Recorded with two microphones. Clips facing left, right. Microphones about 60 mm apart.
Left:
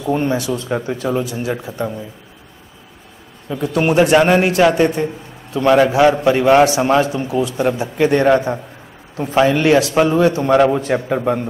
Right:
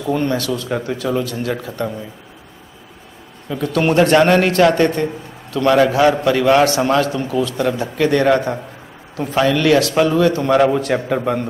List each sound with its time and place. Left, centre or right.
0.0 s a man's voice: centre
1.7 s speech: centre
3.4 s a man's voice: centre
10.5 s a man's voice: centre